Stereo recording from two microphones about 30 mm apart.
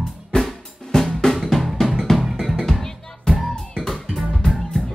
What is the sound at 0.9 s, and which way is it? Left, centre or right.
Drum, centre.